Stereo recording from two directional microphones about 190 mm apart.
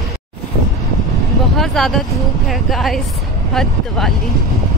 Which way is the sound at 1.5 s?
Centre (ahead or behind).